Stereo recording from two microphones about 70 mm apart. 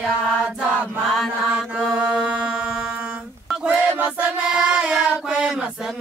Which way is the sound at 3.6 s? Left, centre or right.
Centre.